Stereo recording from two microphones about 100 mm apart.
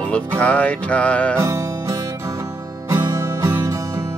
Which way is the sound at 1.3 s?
30° right (ahead or behind).